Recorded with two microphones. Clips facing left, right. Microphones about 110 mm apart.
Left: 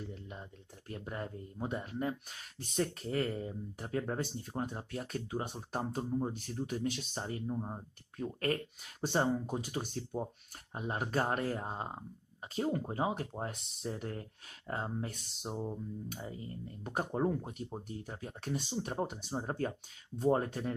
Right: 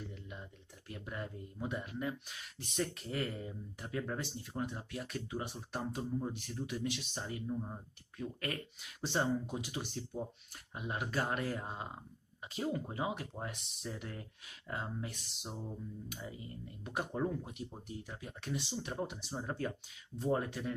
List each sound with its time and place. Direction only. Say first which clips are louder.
0.1 s speech: left 2 dB; 35° left (ahead or behind)